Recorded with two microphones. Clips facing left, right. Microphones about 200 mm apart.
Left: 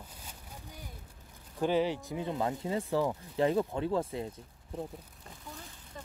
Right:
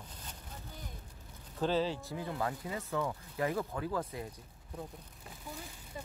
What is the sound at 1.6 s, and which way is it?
Speech, 15° left (ahead or behind).